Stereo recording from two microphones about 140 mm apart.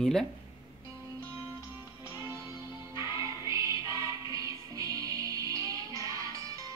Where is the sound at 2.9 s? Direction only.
20° right (ahead or behind).